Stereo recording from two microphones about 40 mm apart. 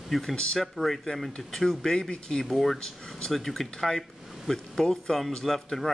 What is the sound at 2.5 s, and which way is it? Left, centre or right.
Speech, centre.